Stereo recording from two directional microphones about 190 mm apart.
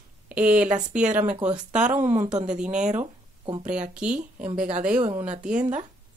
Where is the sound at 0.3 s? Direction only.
5° right (ahead or behind).